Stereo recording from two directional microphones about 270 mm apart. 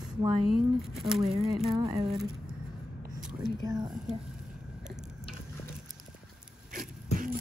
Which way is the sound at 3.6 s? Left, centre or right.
Centre.